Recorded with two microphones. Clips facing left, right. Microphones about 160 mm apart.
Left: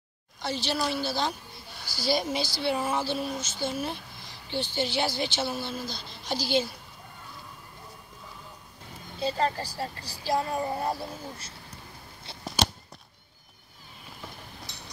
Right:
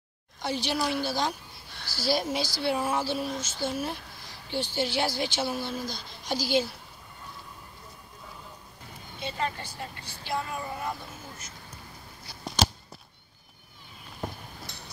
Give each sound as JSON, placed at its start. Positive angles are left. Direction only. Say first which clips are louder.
{"t": 0.4, "sound": "a woman's voice", "louder": "right 1 dB", "side_deg": -15}
{"t": 9.2, "sound": "speech", "louder": "left 5 dB", "side_deg": 35}
{"t": 12.4, "sound": "a sound", "louder": "right 1 dB", "side_deg": 0}